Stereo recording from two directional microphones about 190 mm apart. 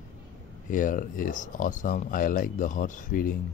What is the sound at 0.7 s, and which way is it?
Speech, 45° left (ahead or behind).